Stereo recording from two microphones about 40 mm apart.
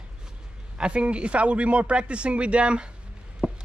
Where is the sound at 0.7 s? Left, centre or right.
Right.